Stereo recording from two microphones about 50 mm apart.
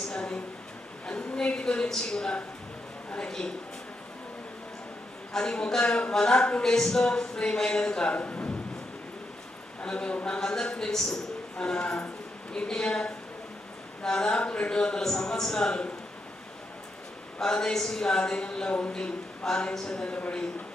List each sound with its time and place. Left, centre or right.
0.1 s speech: centre
1.0 s a sound: centre
1.9 s speech: centre
5.4 s speech: centre
9.8 s speech: centre
17.4 s speech: centre